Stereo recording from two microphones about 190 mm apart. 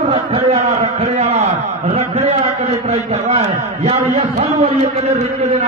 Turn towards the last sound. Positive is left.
turn(degrees=-35)  # may be behind; listen again after turning